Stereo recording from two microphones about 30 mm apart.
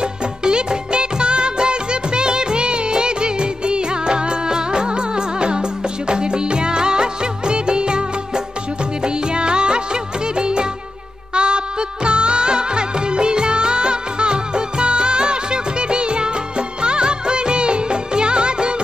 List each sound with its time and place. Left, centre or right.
0.4 s music of bollywood: right
9.0 s music: right